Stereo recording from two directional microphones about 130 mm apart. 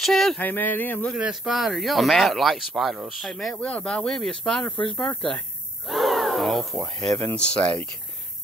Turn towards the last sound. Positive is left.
turn(degrees=10)  # may be behind; listen again after turning